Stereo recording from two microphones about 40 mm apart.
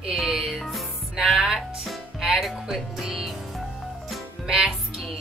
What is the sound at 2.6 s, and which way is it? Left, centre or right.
Speech, centre.